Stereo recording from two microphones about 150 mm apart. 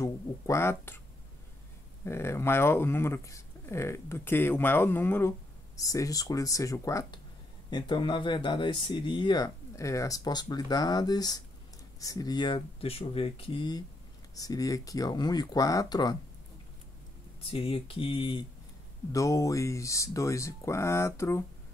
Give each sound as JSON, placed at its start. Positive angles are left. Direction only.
{"t": 0.0, "sound": "speech", "side_deg": 20}
{"t": 2.0, "sound": "speech", "side_deg": 15}
{"t": 17.4, "sound": "speech", "side_deg": 40}
{"t": 19.1, "sound": "speech", "side_deg": 20}